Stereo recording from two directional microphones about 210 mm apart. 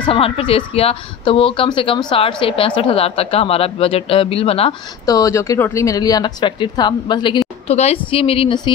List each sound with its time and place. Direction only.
0.0 s a woman's voice: 25° left (ahead or behind)